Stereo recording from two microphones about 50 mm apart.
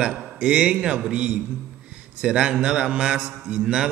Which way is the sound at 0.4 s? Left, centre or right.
Right.